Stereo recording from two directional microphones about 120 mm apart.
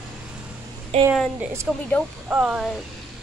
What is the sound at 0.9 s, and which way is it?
Speech, 65° right (ahead or behind).